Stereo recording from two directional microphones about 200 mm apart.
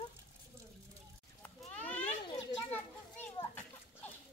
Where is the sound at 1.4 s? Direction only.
10° left (ahead or behind).